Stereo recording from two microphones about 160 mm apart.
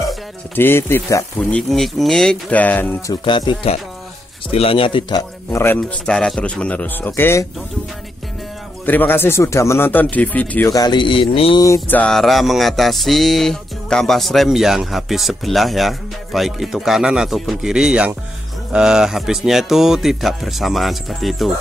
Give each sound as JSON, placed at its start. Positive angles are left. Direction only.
{"t": 0.6, "sound": "a man's voice", "side_deg": 15}
{"t": 1.4, "sound": "music", "side_deg": 0}
{"t": 3.1, "sound": "speech", "side_deg": 30}
{"t": 5.5, "sound": "a man's voice", "side_deg": 15}
{"t": 8.8, "sound": "a man's voice", "side_deg": 10}
{"t": 10.7, "sound": "speech", "side_deg": 25}
{"t": 11.6, "sound": "speech", "side_deg": 20}
{"t": 12.0, "sound": "music", "side_deg": 0}